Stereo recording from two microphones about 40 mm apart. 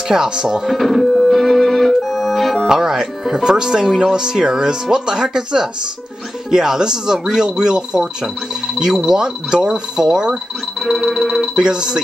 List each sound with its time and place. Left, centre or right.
0.1 s speech: centre
0.7 s organ: centre
2.6 s speech: centre
10.8 s music: centre
11.5 s speech: centre